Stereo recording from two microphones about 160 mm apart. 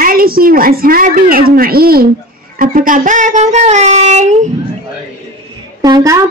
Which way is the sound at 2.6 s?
60° right (ahead or behind).